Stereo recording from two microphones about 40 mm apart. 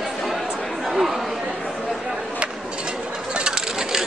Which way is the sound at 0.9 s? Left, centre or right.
Centre.